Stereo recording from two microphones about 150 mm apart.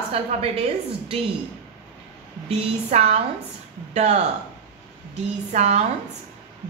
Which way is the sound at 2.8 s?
45° right (ahead or behind).